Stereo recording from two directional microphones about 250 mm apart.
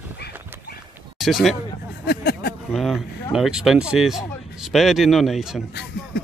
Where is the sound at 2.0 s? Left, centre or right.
Left.